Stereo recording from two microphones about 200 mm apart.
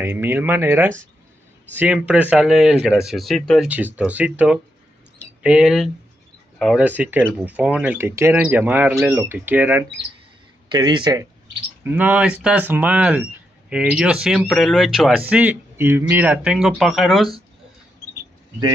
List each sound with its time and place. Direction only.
0.0 s speech: 10° right (ahead or behind)
10.7 s speech: 20° right (ahead or behind)
11.8 s speech: 10° right (ahead or behind)